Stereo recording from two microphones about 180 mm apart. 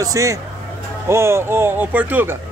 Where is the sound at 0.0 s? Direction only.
20° right (ahead or behind).